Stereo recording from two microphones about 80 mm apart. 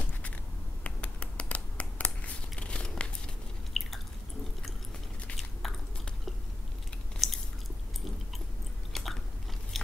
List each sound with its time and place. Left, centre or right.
0.8 s a sound: centre
3.8 s chewing: centre
7.2 s chewing: centre
8.9 s biting: centre